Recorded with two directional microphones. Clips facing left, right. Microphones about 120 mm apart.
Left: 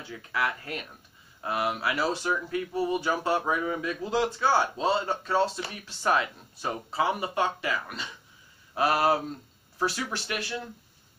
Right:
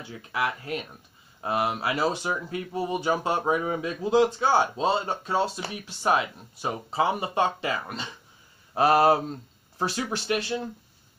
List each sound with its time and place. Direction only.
0.3 s speech: 20° right (ahead or behind)